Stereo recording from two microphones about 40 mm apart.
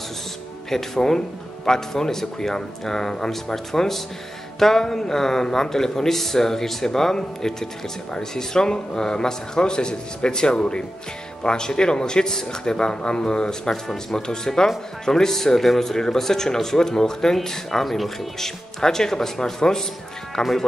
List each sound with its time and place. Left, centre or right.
0.7 s a man's voice: centre